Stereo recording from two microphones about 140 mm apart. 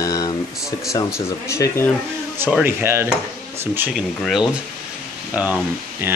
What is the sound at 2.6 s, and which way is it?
Speech, 15° right (ahead or behind).